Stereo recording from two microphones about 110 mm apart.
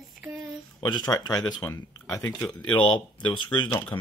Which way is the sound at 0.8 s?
40° left (ahead or behind).